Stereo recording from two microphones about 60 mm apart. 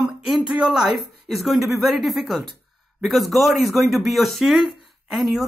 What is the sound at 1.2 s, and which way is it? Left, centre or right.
Speech, centre.